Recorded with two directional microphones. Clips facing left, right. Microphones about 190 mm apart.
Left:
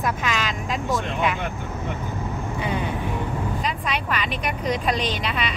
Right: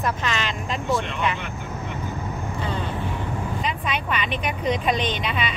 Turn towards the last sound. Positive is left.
turn(degrees=0)  # may be behind; listen again after turning